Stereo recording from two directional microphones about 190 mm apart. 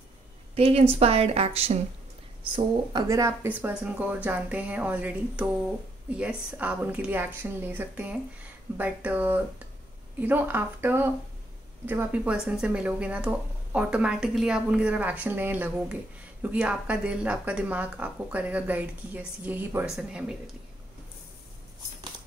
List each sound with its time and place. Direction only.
0.6 s a woman's voice: 30° right (ahead or behind)
2.5 s speech: 20° right (ahead or behind)